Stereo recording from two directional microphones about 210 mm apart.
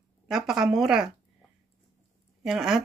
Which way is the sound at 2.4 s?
5° right (ahead or behind).